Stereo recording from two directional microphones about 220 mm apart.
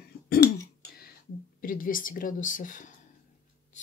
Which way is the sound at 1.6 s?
40° left (ahead or behind).